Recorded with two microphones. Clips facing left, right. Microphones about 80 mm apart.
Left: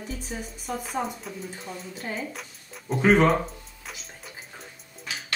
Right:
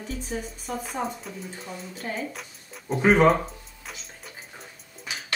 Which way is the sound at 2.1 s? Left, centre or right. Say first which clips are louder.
Right 1 dB; centre.